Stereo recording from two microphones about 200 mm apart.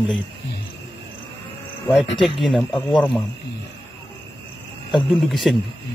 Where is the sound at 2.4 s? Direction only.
5° left (ahead or behind).